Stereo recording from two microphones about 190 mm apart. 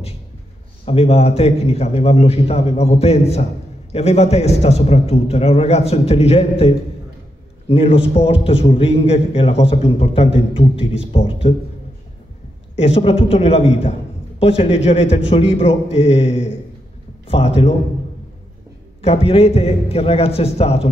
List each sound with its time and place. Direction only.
0.8 s a man's voice: 30° left (ahead or behind)
7.6 s a man's voice: 30° left (ahead or behind)
12.7 s a man's voice: 30° left (ahead or behind)
18.9 s a man's voice: 30° left (ahead or behind)